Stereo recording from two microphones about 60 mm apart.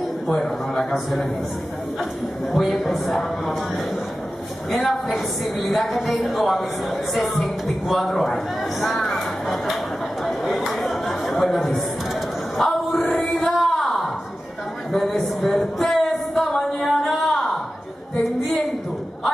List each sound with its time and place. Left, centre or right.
0.3 s a man's voice: centre
2.5 s a woman's voice: centre
4.6 s a woman's voice: centre
10.2 s chatter: centre
11.5 s a woman's voice: centre
12.5 s a sound: centre
13.0 s music: centre
13.6 s a sound: centre